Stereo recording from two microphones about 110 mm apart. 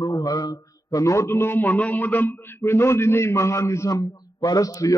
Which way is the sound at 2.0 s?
15° left (ahead or behind).